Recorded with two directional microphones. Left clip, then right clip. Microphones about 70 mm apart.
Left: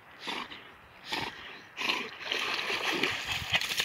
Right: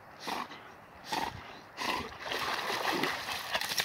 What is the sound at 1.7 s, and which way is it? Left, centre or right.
Splash, centre.